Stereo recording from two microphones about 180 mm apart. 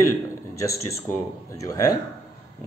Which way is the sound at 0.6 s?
15° left (ahead or behind).